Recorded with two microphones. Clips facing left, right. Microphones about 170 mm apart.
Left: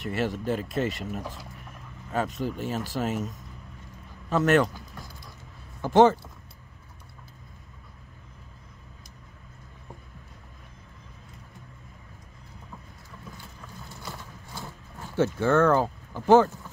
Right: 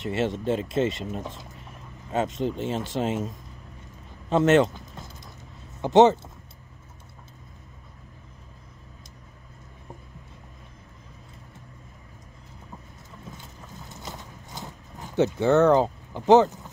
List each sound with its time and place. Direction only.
0.0 s speech: 25° right (ahead or behind)
4.3 s keys jangling: 25° right (ahead or behind)
5.8 s speech: 20° right (ahead or behind)
13.4 s clip-clop: 20° right (ahead or behind)